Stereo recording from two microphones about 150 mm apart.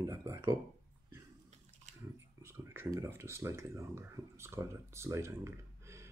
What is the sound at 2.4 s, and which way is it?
Speech, 15° right (ahead or behind).